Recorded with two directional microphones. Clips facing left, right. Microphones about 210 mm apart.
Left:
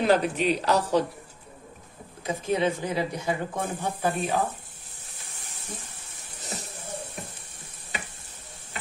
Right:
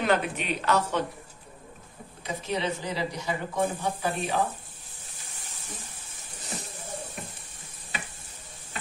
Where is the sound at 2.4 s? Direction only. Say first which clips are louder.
Left 5 dB; 50° left (ahead or behind).